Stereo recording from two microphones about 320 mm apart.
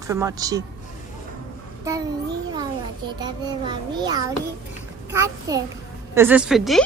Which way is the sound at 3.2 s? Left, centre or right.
Centre.